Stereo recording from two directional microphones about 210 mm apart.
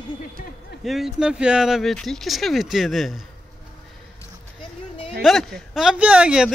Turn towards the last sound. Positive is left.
turn(degrees=-5)  # may be behind; listen again after turning